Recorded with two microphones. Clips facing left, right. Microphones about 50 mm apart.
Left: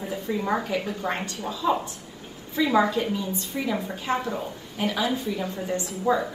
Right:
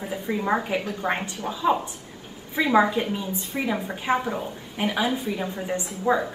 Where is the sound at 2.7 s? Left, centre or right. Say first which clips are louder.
Right 3 dB; right.